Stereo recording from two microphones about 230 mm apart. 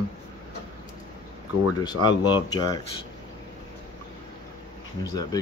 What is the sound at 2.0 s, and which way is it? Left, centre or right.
Speech, centre.